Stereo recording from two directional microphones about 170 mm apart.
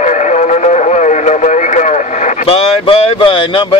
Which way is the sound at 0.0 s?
45° left (ahead or behind).